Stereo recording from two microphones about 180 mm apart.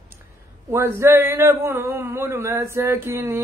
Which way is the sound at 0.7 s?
15° right (ahead or behind).